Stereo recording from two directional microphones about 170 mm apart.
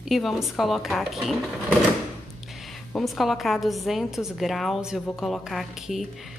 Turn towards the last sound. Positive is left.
turn(degrees=0)  # may be behind; listen again after turning